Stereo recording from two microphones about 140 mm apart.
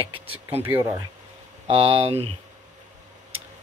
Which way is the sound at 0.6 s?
15° right (ahead or behind).